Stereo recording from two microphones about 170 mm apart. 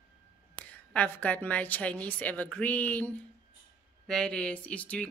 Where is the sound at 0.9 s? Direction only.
10° left (ahead or behind).